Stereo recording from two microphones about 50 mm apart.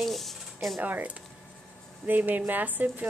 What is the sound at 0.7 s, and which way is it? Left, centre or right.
Speech, right.